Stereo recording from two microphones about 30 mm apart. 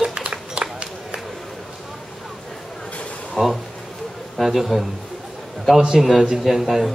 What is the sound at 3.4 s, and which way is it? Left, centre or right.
A man's voice, centre.